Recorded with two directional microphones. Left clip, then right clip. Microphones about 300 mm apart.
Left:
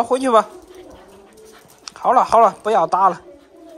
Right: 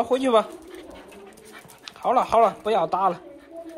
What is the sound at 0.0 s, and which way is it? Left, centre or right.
Speech, centre.